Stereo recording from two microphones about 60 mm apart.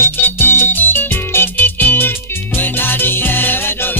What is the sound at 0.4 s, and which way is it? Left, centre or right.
Music, left.